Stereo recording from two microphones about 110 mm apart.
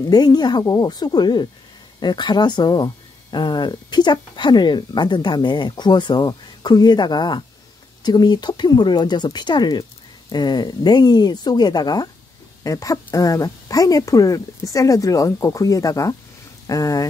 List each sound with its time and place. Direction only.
0.1 s a woman's voice: 35° left (ahead or behind)